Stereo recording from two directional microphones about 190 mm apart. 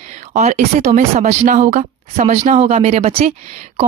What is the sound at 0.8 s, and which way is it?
Speech, 35° right (ahead or behind).